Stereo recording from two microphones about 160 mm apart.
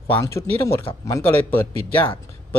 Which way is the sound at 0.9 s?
35° left (ahead or behind).